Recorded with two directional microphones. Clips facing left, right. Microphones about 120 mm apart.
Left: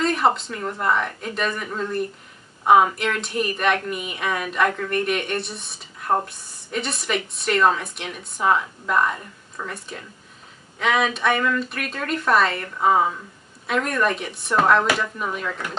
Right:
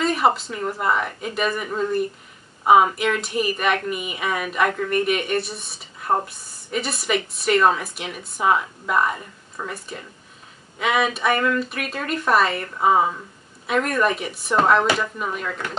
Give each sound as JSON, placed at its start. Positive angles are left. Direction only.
{"t": 0.0, "sound": "a woman's voice", "side_deg": -5}